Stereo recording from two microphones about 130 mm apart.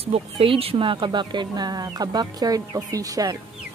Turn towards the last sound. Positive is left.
turn(degrees=-25)  # may be behind; listen again after turning